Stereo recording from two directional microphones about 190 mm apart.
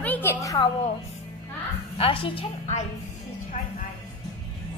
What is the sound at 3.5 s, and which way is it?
Music, 40° left (ahead or behind).